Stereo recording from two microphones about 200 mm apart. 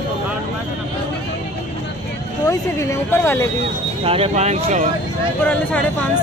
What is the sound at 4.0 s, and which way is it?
Speech, 30° right (ahead or behind).